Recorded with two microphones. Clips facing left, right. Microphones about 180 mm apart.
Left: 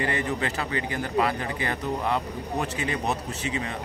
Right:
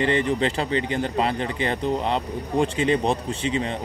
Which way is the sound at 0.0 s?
25° right (ahead or behind).